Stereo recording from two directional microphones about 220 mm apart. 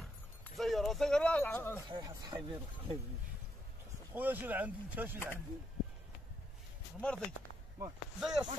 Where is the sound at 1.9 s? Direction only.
15° right (ahead or behind).